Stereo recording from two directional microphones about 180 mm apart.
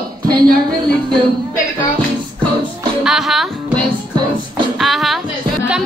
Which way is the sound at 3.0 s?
Centre (ahead or behind).